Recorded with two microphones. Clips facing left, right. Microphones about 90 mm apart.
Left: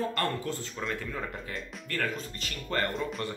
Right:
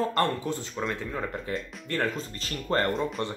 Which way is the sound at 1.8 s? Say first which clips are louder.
Right 3 dB; 30° right (ahead or behind).